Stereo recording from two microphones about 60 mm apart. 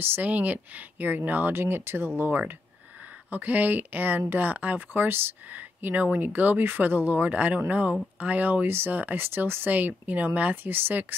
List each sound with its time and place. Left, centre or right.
0.2 s speech: right
1.5 s speech: right